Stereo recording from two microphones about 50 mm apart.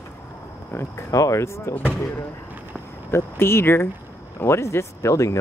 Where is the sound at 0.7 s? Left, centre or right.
Left.